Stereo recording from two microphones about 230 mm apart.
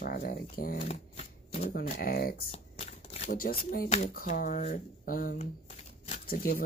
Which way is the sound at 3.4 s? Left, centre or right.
Left.